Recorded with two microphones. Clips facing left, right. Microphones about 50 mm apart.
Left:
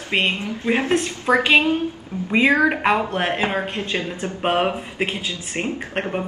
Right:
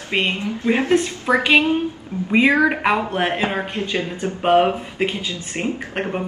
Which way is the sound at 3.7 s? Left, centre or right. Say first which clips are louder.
Right 1 dB; left.